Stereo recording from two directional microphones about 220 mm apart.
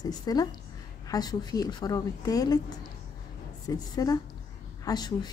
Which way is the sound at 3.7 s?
15° left (ahead or behind).